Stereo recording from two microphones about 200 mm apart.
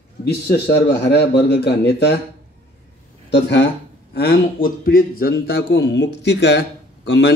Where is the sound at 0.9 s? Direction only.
55° left (ahead or behind).